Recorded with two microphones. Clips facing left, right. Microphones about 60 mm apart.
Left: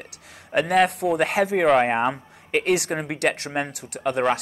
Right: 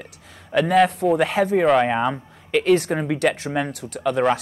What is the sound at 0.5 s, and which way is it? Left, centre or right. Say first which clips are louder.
Speech: right 2 dB; left.